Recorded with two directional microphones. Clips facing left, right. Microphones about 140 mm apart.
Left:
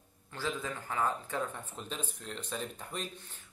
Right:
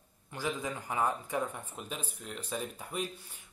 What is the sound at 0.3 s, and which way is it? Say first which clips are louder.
Speech: right 1 dB; 15° right (ahead or behind).